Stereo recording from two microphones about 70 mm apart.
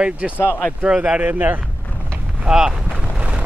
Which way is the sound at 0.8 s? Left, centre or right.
Centre.